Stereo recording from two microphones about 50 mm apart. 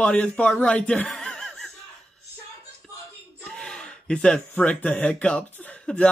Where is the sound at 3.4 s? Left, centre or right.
Centre.